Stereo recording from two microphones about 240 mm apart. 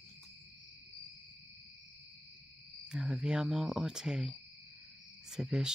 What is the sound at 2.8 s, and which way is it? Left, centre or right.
Speech, centre.